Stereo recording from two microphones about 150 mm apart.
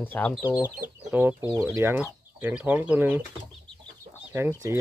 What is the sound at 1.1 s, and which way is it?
Speech, 10° right (ahead or behind).